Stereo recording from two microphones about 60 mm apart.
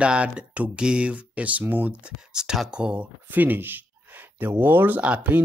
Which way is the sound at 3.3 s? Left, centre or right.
Right.